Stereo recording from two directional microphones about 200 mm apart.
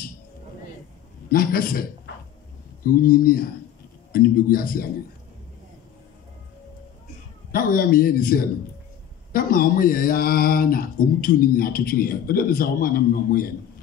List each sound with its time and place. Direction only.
1.3 s speech: 45° left (ahead or behind)
7.5 s speech: 45° left (ahead or behind)